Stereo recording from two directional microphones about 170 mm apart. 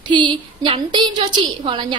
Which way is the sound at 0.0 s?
25° right (ahead or behind).